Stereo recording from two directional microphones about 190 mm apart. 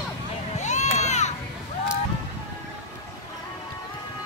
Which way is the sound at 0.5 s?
40° left (ahead or behind).